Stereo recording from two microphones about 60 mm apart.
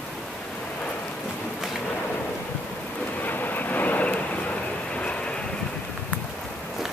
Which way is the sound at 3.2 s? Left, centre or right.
Left.